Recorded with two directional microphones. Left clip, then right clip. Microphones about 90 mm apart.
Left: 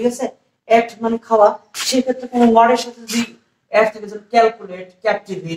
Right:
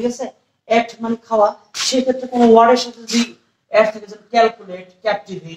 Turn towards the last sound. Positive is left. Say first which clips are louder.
# left 1 dB
turn(degrees=-30)  # may be behind; listen again after turning